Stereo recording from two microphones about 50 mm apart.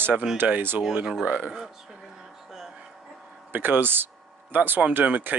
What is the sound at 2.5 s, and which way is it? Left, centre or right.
Music, centre.